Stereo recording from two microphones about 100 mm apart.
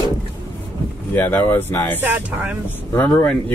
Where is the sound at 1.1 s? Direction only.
20° left (ahead or behind).